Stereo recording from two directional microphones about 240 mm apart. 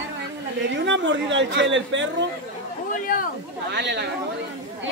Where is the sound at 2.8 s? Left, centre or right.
Left.